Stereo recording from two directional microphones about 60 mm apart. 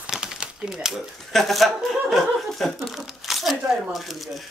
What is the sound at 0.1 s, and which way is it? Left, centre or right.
Typewriter, centre.